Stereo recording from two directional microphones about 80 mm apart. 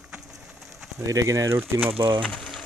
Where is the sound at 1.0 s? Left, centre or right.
Right.